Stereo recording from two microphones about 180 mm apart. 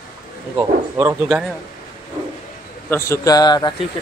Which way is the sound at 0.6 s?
15° right (ahead or behind).